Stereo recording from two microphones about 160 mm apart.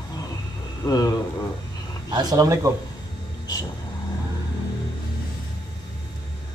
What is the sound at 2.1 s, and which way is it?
Speech, 25° right (ahead or behind).